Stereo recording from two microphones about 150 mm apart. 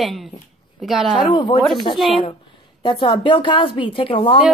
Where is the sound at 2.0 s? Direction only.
Centre (ahead or behind).